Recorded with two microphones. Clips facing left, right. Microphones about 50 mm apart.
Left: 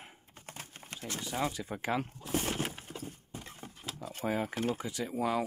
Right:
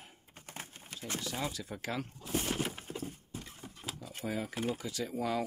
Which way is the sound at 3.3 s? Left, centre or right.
Left.